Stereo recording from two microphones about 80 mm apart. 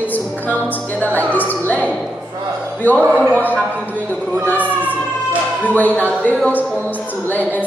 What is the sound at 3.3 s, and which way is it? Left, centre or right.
A woman's voice, left.